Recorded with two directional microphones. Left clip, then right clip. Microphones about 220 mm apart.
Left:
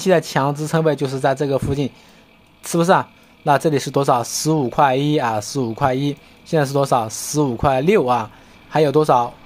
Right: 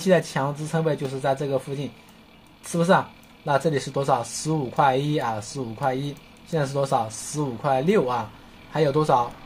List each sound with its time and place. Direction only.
0.0 s speech: 40° left (ahead or behind)